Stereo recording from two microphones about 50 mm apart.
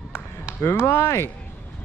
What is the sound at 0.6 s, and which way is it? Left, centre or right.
Speech, left.